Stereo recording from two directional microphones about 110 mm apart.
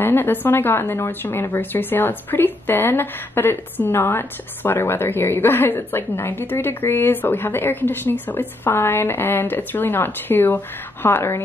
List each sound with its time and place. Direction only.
0.0 s a woman's voice: 20° left (ahead or behind)